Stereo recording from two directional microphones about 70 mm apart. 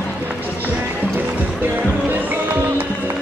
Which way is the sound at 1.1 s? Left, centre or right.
Right.